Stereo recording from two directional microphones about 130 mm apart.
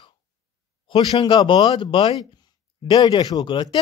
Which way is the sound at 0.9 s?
40° left (ahead or behind).